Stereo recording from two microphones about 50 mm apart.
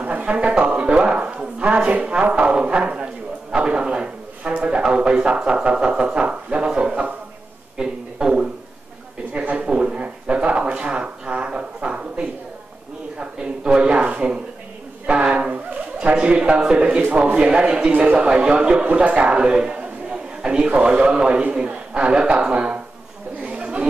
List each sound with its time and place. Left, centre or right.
0.0 s a sound: right
1.8 s a woman's voice: centre
7.7 s a sound: centre
16.8 s a woman's voice: right
17.9 s a woman's voice: right
23.4 s chatter: right